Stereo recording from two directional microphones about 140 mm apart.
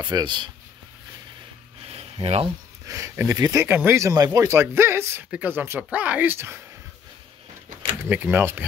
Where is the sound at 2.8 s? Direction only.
20° right (ahead or behind).